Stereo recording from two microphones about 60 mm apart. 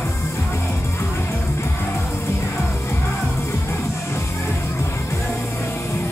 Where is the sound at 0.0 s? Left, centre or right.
Left.